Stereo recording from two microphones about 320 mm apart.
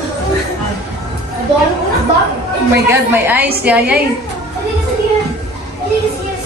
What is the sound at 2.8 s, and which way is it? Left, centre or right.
A woman's voice, centre.